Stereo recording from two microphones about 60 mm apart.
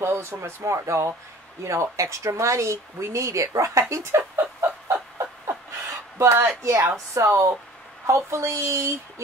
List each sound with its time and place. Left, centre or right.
0.0 s speech: right
3.9 s speech: right
4.4 s a sound: right
6.1 s speech: right